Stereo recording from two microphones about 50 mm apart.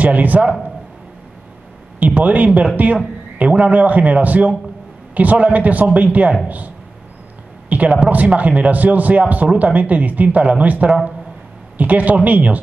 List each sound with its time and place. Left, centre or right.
0.0 s a man's voice: right
2.0 s a man's voice: right
7.7 s a man's voice: right